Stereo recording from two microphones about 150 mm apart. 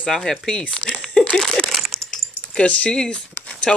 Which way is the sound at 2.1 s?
5° left (ahead or behind).